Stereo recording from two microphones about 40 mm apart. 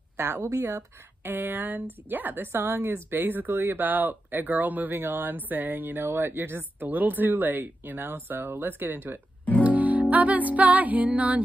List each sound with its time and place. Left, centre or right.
0.2 s speech: right
1.2 s speech: right
2.5 s speech: right
3.2 s speech: right
6.0 s speech: right
6.9 s speech: right
9.6 s music: right